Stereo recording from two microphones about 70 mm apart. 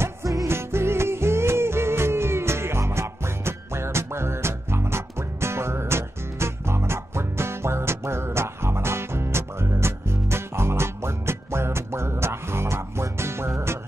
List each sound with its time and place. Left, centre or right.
0.0 s music: right
0.5 s music: right